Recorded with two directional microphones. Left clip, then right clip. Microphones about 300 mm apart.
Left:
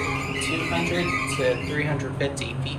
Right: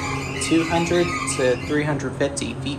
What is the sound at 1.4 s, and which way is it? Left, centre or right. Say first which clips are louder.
Speech: right 7 dB; right.